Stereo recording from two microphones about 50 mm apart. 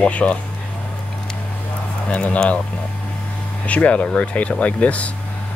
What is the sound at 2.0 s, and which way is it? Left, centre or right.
Speech, left.